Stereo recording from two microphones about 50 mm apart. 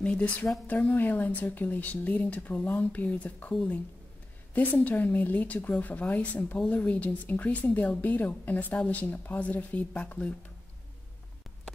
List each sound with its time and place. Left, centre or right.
0.0 s speech: left
4.7 s speech: left